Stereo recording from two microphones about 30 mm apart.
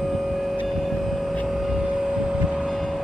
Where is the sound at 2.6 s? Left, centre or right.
Centre.